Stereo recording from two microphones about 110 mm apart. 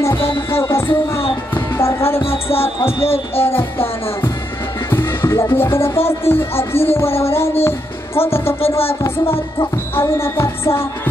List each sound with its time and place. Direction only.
0.3 s music: 25° left (ahead or behind)
1.5 s speech: 25° left (ahead or behind)
2.2 s speech: 60° left (ahead or behind)
3.4 s music: 20° left (ahead or behind)
8.5 s speech: 60° left (ahead or behind)
9.0 s music: 20° left (ahead or behind)